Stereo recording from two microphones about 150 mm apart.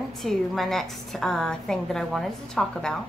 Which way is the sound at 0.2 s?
Centre (ahead or behind).